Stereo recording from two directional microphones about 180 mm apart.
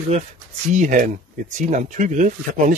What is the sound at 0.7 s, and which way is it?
Speech, 45° right (ahead or behind).